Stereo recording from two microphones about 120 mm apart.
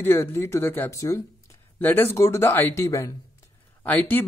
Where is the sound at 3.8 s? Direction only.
15° left (ahead or behind).